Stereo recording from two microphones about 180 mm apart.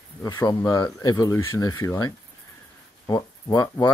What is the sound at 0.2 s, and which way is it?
Speech, 20° left (ahead or behind).